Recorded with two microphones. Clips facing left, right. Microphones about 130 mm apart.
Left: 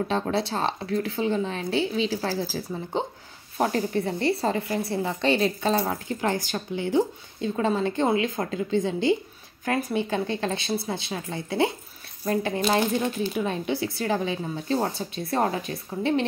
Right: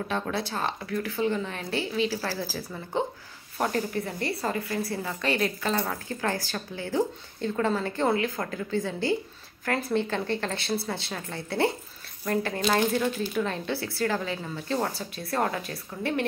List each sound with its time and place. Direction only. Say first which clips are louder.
0.1 s a woman's voice: left 4 dB; 25° left (ahead or behind)